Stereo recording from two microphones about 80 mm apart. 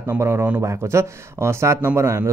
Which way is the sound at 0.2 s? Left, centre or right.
Right.